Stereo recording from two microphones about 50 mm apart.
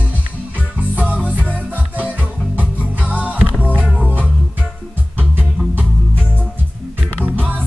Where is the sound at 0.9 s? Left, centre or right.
Right.